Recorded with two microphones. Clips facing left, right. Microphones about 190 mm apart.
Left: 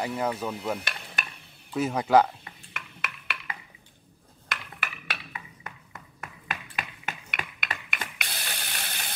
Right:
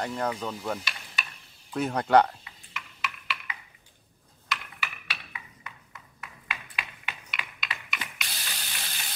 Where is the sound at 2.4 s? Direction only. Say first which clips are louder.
Left 1 dB; 55° left (ahead or behind).